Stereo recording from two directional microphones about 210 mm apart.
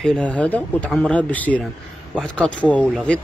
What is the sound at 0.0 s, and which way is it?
Speech, 5° left (ahead or behind).